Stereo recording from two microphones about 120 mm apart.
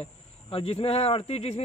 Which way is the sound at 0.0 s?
55° left (ahead or behind).